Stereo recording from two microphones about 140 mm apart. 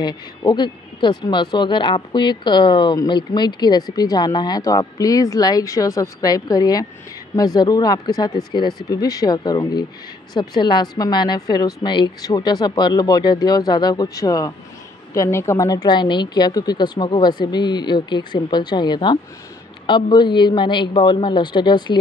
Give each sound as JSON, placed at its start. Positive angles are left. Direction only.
{"t": 0.0, "sound": "a woman's voice", "side_deg": 30}
{"t": 8.4, "sound": "speech", "side_deg": 0}
{"t": 8.8, "sound": "a woman's voice", "side_deg": 25}